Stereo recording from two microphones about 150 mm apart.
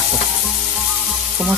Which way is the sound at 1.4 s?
Centre (ahead or behind).